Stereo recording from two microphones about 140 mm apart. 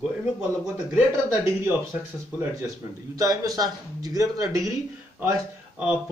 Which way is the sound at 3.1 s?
25° right (ahead or behind).